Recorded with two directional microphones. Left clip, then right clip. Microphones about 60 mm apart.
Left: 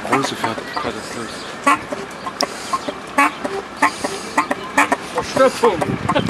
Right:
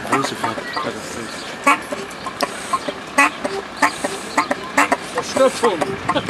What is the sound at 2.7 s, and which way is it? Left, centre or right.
Vehicle, centre.